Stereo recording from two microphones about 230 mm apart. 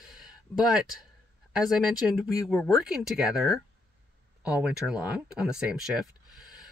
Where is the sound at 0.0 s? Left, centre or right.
Centre.